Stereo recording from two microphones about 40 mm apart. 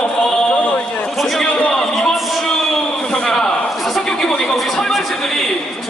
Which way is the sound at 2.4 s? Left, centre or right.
Centre.